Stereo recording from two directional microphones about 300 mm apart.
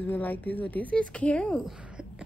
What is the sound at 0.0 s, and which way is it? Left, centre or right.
A woman's voice, centre.